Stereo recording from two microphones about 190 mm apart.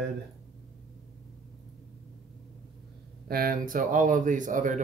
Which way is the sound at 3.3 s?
50° right (ahead or behind).